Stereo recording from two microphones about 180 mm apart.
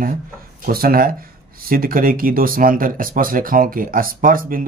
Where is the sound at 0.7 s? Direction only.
55° right (ahead or behind).